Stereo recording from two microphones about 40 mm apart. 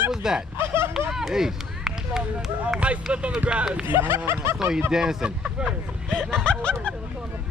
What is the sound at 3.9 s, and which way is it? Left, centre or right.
Speech, right.